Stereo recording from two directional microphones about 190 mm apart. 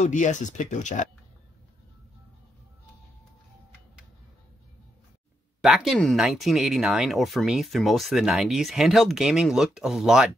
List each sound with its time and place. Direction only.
0.0 s speech: 40° left (ahead or behind)
5.6 s speech: centre (ahead or behind)